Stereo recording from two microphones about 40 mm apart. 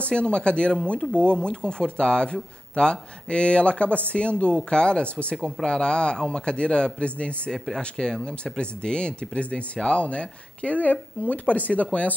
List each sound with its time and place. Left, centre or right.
0.0 s a man's voice: left
5.3 s a man's voice: centre
7.5 s speech: centre
7.8 s a man's voice: left